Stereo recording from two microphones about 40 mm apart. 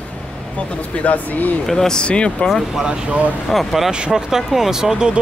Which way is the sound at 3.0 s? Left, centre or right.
Right.